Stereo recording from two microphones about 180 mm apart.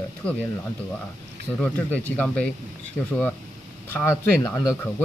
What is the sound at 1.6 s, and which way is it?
Speech, 10° left (ahead or behind).